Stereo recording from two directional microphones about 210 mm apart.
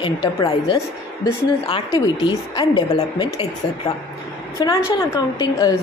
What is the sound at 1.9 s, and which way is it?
A woman's voice, 20° left (ahead or behind).